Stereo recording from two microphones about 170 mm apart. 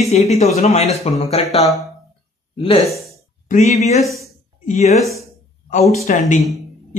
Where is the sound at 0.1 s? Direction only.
40° left (ahead or behind).